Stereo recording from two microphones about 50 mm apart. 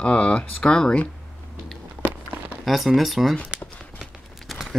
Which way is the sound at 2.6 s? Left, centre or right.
Centre.